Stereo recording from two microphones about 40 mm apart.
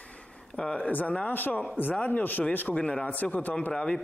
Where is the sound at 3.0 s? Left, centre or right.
Left.